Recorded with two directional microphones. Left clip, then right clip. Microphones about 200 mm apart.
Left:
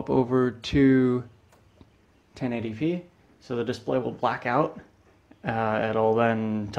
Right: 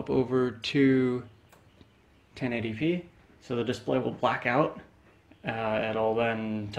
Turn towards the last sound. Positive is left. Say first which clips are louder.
# left 4 dB
turn(degrees=30)  # may be behind; listen again after turning